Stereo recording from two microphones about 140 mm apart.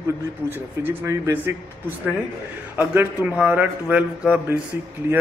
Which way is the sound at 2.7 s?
10° right (ahead or behind).